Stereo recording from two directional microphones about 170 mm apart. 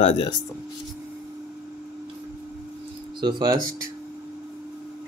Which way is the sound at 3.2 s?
25° right (ahead or behind).